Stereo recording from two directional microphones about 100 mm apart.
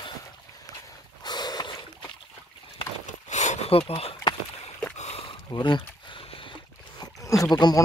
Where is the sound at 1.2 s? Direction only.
45° left (ahead or behind).